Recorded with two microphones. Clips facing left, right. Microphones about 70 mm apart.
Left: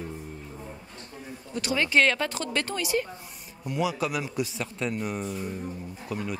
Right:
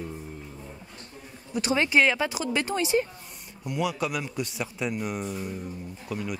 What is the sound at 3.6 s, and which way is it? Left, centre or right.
A man's voice, centre.